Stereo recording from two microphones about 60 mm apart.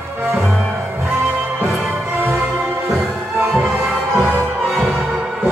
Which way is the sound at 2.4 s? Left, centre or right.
Right.